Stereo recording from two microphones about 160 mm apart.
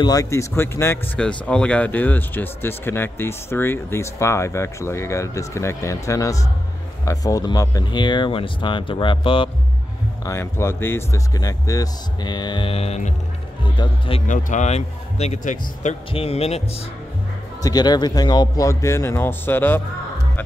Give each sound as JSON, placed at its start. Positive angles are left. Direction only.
{"t": 0.0, "sound": "speech", "side_deg": 20}
{"t": 10.2, "sound": "speech", "side_deg": 15}
{"t": 14.2, "sound": "speech", "side_deg": 50}
{"t": 17.6, "sound": "speech", "side_deg": 25}